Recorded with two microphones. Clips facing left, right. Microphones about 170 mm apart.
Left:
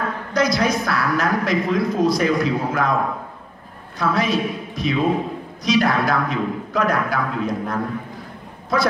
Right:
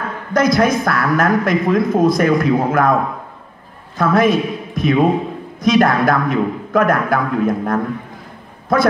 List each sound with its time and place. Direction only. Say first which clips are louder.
0.3 s a woman's voice: right 5 dB; 50° right (ahead or behind)
4.0 s a man's voice: right 6 dB; 50° right (ahead or behind)